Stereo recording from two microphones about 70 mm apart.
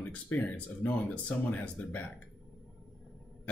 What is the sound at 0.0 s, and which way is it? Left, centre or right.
Speech, left.